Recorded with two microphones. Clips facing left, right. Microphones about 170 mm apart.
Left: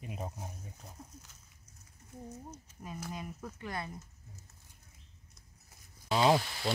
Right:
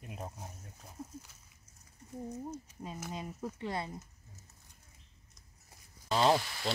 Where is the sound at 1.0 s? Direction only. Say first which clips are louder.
Right 10 dB; 5° right (ahead or behind).